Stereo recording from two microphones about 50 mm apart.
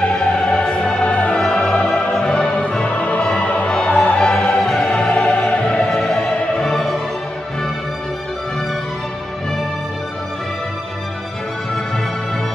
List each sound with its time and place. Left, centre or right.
0.2 s music: left
5.9 s music: centre